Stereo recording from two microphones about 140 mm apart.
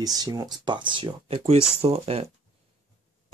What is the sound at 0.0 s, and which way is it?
Speech, 30° right (ahead or behind).